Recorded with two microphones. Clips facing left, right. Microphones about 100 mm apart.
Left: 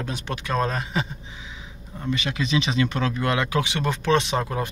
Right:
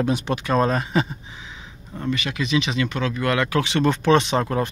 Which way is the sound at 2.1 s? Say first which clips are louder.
Right 1 dB; 25° left (ahead or behind).